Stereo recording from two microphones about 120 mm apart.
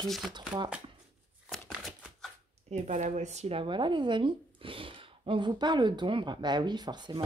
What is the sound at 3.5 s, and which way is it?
Speech, 40° right (ahead or behind).